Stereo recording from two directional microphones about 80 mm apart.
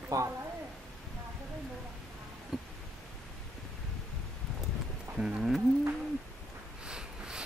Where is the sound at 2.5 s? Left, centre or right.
Centre.